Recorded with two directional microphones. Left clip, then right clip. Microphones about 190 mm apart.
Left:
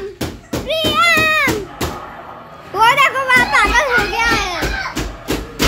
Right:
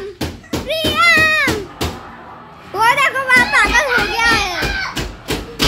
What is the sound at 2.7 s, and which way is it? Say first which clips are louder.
Children playing: left 2 dB; centre (ahead or behind).